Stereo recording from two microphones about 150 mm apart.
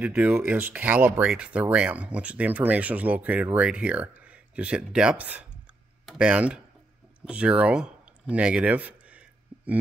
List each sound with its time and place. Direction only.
0.0 s speech: 5° right (ahead or behind)